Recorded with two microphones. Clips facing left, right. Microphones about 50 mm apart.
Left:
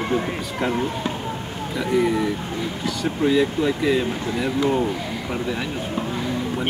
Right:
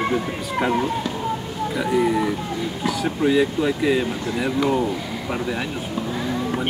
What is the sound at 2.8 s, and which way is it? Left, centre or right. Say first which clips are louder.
Speech: right 1 dB; centre.